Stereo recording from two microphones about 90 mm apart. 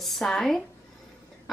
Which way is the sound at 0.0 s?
Centre (ahead or behind).